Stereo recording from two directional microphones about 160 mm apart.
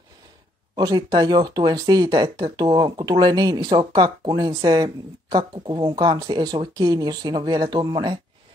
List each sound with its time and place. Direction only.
0.7 s speech: 25° right (ahead or behind)